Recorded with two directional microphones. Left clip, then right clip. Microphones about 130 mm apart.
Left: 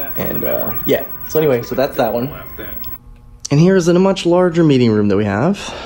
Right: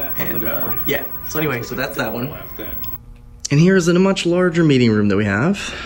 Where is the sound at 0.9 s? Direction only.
55° left (ahead or behind).